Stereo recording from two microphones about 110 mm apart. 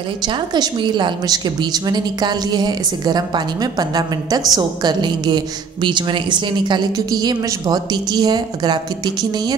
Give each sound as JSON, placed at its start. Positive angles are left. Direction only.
{"t": 0.6, "sound": "a woman's voice", "side_deg": -45}